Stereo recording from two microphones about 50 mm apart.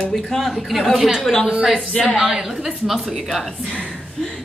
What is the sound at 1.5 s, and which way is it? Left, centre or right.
Speech, centre.